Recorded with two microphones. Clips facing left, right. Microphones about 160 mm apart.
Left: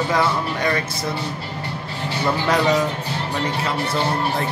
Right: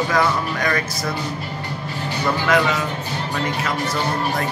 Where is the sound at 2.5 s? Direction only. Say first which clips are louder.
Right 2 dB; 35° left (ahead or behind).